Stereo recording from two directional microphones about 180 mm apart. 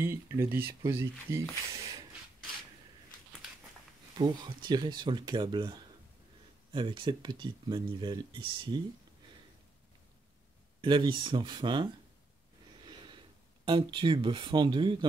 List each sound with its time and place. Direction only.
0.0 s speech: 15° right (ahead or behind)
4.2 s speech: 25° right (ahead or behind)
10.8 s speech: 25° right (ahead or behind)
12.8 s a sound: 25° right (ahead or behind)
13.7 s speech: 25° right (ahead or behind)